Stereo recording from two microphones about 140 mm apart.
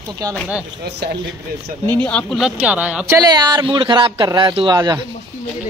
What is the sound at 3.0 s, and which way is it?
A man's voice, 25° right (ahead or behind).